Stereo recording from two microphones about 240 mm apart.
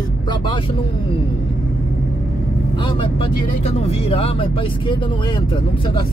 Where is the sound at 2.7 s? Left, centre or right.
Left.